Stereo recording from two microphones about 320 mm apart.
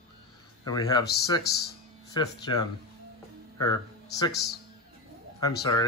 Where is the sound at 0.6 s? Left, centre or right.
Centre.